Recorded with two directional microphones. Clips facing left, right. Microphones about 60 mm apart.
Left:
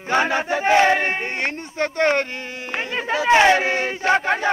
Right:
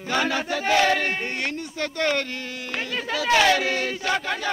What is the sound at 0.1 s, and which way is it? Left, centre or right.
Speech, left.